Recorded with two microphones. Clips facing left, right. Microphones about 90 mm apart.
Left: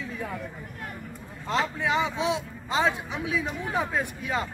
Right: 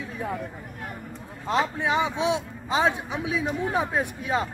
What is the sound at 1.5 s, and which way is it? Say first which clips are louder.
A man's voice: right 2 dB; 20° right (ahead or behind).